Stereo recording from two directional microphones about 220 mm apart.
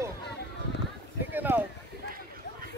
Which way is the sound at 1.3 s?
10° right (ahead or behind).